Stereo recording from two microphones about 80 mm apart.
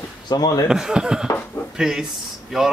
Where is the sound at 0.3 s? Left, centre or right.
Left.